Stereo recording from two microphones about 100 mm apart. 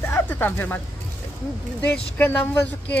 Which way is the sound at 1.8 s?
15° left (ahead or behind).